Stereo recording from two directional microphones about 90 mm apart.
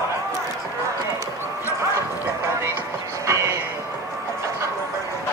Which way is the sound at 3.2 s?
35° right (ahead or behind).